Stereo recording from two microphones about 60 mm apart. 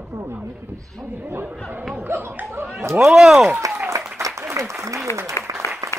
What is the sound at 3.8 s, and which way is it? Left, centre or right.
Applause, right.